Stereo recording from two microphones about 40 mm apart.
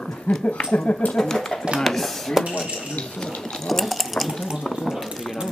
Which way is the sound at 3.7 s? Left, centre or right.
Centre.